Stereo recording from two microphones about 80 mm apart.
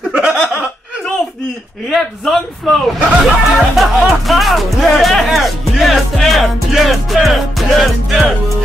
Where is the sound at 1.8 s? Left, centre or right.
Centre.